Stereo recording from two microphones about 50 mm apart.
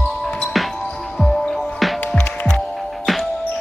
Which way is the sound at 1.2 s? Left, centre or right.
Centre.